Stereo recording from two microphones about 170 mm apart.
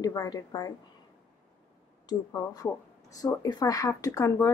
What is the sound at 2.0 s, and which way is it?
Speech, 20° left (ahead or behind).